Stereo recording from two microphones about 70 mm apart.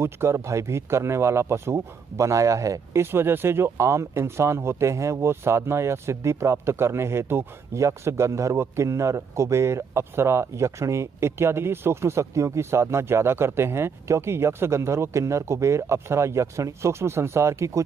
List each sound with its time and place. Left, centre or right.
0.0 s a man's voice: right